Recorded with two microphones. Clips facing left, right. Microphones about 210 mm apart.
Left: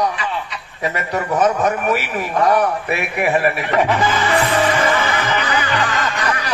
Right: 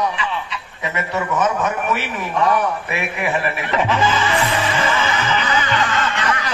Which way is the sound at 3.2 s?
40° left (ahead or behind).